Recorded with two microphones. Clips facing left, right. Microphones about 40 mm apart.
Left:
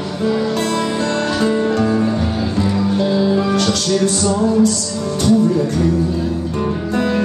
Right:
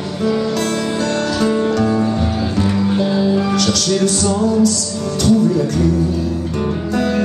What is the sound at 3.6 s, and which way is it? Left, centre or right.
Music, centre.